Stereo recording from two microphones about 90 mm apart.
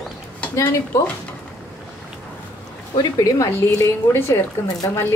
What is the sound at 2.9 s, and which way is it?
A woman's voice, 40° left (ahead or behind).